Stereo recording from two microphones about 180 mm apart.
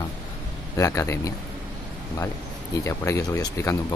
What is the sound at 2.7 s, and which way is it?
Speech, 15° left (ahead or behind).